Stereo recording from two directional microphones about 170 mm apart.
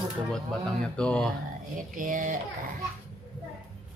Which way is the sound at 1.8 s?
50° right (ahead or behind).